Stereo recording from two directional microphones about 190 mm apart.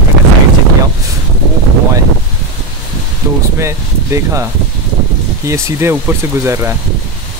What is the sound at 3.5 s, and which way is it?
Speech, 15° right (ahead or behind).